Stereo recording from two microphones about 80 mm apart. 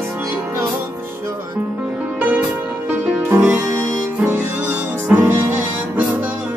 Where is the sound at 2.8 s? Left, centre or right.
Right.